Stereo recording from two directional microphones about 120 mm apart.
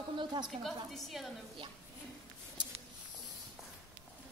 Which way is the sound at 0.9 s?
Centre (ahead or behind).